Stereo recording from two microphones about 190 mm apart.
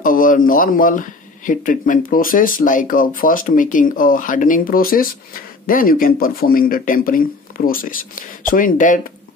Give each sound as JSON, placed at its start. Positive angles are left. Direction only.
{"t": 0.0, "sound": "speech", "side_deg": 45}